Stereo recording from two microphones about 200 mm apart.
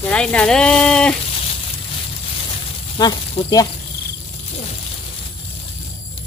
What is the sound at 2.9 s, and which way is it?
Speech, 20° left (ahead or behind).